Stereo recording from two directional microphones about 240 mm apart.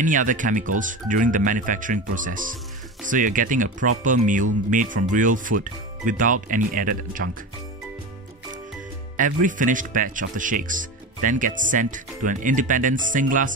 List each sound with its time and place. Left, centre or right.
0.0 s speech: right
9.1 s speech: right